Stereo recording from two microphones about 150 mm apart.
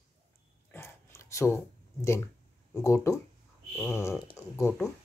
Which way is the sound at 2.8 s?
20° left (ahead or behind).